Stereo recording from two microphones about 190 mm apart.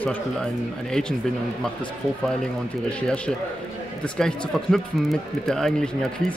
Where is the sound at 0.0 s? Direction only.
5° left (ahead or behind).